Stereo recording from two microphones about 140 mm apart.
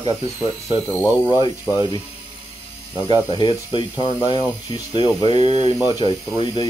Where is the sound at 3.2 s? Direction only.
35° left (ahead or behind).